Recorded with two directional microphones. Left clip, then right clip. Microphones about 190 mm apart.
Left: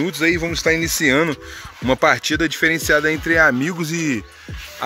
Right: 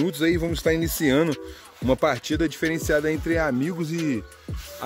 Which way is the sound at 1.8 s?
Centre (ahead or behind).